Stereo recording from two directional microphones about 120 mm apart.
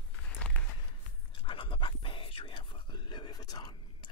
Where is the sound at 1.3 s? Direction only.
45° left (ahead or behind).